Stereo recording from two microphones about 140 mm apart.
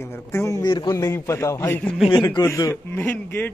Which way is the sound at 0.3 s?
20° left (ahead or behind).